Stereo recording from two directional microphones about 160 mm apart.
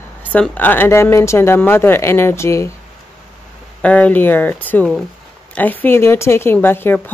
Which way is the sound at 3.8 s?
10° left (ahead or behind).